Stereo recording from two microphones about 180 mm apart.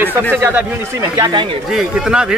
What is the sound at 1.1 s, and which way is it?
Speech, 25° right (ahead or behind).